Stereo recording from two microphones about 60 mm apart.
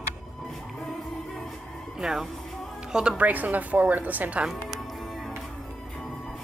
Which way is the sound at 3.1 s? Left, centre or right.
Right.